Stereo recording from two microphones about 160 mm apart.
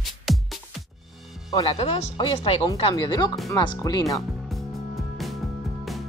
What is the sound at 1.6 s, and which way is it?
Speech, 35° left (ahead or behind).